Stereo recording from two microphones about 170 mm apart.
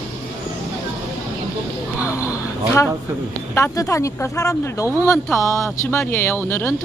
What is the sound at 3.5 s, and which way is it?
Speech, 15° left (ahead or behind).